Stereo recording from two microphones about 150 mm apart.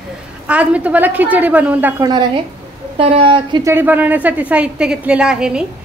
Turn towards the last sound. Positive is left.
turn(degrees=-5)  # may be behind; listen again after turning